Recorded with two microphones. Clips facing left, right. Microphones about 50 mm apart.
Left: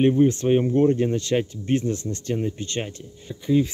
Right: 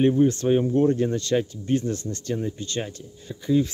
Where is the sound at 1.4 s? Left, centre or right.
Left.